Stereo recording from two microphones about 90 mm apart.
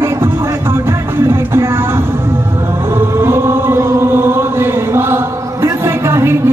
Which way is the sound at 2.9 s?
25° right (ahead or behind).